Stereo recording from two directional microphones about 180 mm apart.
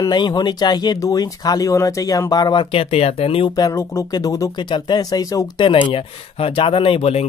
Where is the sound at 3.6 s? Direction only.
20° left (ahead or behind).